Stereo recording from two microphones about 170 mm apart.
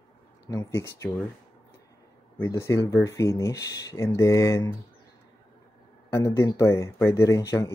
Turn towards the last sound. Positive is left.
turn(degrees=20)  # may be behind; listen again after turning